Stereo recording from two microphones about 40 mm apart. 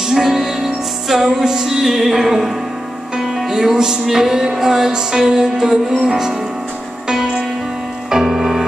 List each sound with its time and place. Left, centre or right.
0.0 s music: centre